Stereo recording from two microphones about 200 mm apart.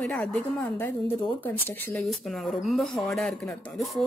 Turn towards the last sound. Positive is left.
turn(degrees=0)  # may be behind; listen again after turning